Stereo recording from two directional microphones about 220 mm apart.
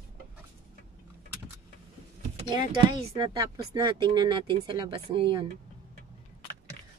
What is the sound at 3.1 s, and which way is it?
Speech, 20° right (ahead or behind).